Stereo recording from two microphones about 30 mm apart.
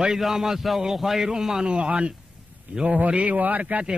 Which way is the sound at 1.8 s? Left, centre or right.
Right.